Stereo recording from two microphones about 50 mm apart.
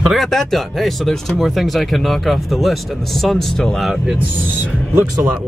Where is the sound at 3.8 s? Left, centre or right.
Centre.